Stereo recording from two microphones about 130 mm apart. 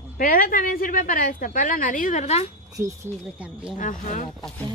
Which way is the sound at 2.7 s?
25° right (ahead or behind).